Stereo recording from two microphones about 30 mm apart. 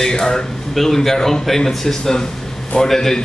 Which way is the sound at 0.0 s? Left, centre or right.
Centre.